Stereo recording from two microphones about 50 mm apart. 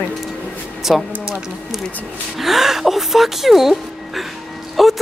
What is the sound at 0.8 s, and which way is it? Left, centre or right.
Speech, centre.